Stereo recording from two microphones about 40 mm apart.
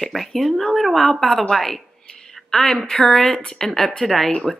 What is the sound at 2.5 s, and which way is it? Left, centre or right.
A woman's voice, centre.